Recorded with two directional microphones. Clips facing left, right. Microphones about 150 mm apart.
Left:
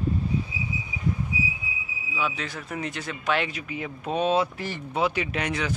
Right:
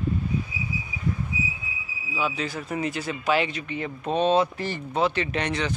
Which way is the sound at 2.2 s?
Centre (ahead or behind).